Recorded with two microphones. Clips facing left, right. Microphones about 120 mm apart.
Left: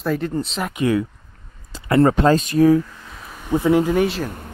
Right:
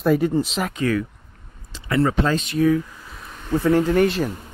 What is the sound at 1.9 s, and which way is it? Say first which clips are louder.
Speech: left 5 dB; 45° left (ahead or behind).